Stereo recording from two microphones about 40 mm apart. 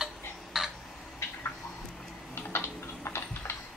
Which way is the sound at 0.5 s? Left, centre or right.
Centre.